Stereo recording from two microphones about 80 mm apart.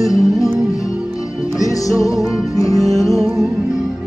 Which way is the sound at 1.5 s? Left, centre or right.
Left.